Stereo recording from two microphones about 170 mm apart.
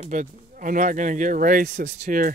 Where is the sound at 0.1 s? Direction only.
50° right (ahead or behind).